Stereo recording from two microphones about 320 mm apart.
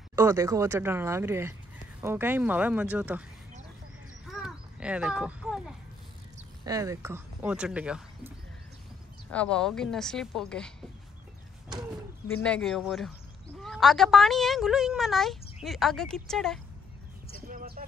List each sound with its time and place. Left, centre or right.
0.1 s speech: centre
4.3 s a sound: centre
6.6 s speech: centre
9.3 s speech: centre
12.3 s speech: centre
17.5 s a sound: right